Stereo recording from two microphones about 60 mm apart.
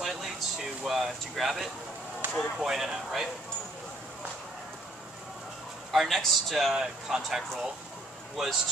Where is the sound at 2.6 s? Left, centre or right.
Centre.